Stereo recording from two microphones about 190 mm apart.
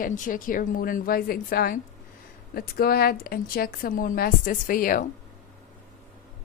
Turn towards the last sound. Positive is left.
turn(degrees=45)  # may be behind; listen again after turning